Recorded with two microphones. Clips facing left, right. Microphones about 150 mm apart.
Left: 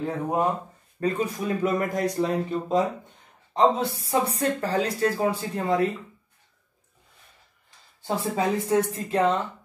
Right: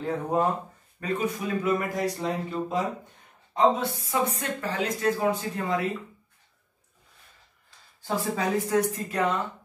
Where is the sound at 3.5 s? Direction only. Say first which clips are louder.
Left 1 dB; 30° left (ahead or behind).